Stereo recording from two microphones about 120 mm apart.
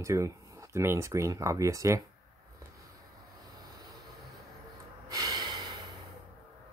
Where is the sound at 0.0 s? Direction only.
25° right (ahead or behind).